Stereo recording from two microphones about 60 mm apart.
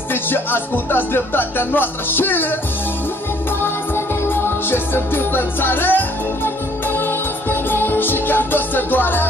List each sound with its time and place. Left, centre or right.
0.1 s speech: left
3.6 s music: left